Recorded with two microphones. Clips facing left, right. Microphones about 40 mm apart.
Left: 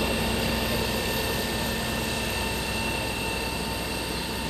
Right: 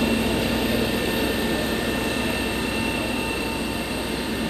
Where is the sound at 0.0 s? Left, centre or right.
Right.